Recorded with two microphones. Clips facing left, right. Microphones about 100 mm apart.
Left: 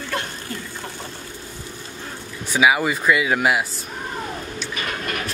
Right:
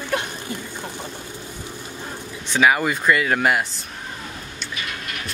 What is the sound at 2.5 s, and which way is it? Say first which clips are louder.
Speech: even; 5° left (ahead or behind).